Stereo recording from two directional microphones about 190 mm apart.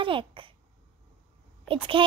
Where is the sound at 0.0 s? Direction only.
25° right (ahead or behind).